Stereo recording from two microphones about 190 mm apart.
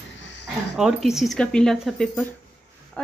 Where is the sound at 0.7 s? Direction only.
5° right (ahead or behind).